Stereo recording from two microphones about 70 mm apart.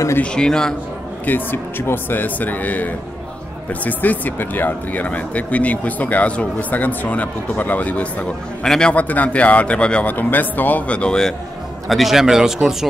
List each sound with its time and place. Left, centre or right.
0.2 s a man's voice: centre
1.2 s speech: left
8.6 s a man's voice: centre
8.9 s speech: left
10.1 s speech: left; by 11.3 s centre
11.9 s speech: centre